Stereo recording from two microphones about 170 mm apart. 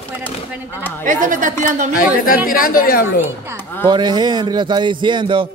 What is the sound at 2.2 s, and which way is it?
Speech, 60° left (ahead or behind).